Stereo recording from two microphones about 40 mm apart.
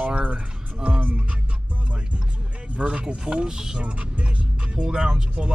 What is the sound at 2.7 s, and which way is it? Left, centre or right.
Music, right.